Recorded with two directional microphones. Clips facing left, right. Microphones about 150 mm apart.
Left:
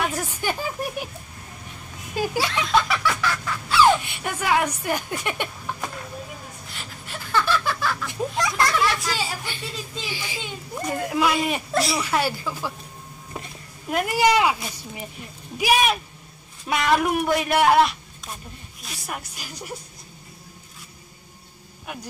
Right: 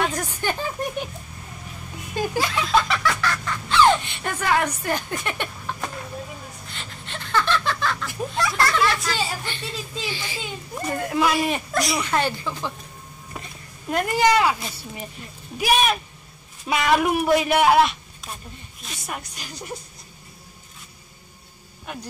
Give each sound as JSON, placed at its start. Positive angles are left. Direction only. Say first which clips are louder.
{"t": 0.0, "sound": "a sound", "louder": "right 1 dB", "side_deg": 5}
{"t": 2.1, "sound": "speech", "louder": "even", "side_deg": 10}
{"t": 2.6, "sound": "snicker", "louder": "even", "side_deg": 0}
{"t": 6.7, "sound": "laughter", "louder": "even", "side_deg": 5}
{"t": 8.1, "sound": "a sound", "louder": "even", "side_deg": 20}
{"t": 8.7, "sound": "speech", "louder": "right 1 dB", "side_deg": 5}
{"t": 10.0, "sound": "speech", "louder": "right 2 dB", "side_deg": 10}
{"t": 10.4, "sound": "speech", "louder": "even", "side_deg": -5}
{"t": 16.6, "sound": "speech", "louder": "right 1 dB", "side_deg": 0}